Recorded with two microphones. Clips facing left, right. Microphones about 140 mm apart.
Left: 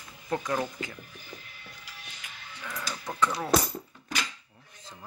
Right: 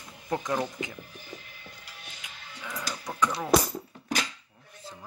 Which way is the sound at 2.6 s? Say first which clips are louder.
Right 1 dB; 15° right (ahead or behind).